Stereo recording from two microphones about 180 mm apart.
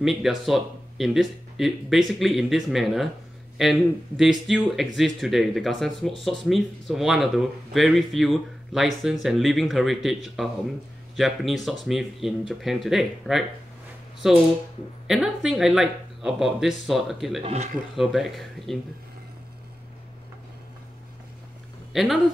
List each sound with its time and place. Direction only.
0.0 s speech: centre (ahead or behind)
4.2 s speech: centre (ahead or behind)
17.4 s speech: 35° right (ahead or behind)
17.9 s speech: centre (ahead or behind)
21.9 s speech: centre (ahead or behind)